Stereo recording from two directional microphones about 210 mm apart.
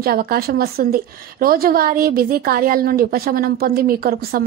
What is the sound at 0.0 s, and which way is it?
Speech, 45° right (ahead or behind).